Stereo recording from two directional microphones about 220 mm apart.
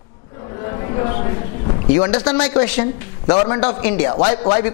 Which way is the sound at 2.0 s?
20° left (ahead or behind).